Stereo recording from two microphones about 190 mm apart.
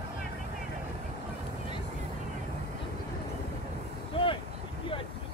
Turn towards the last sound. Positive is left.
turn(degrees=25)  # may be behind; listen again after turning